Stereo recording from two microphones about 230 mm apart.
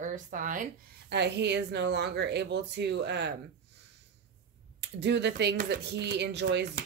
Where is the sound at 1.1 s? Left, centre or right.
Right.